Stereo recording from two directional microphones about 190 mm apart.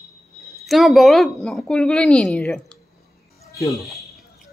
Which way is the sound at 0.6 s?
Centre (ahead or behind).